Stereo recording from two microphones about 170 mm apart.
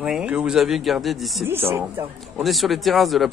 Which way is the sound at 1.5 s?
15° right (ahead or behind).